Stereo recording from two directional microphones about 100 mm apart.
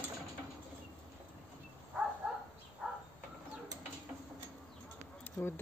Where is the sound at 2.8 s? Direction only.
Centre (ahead or behind).